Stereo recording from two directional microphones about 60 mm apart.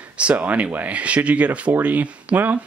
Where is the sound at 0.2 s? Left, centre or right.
Right.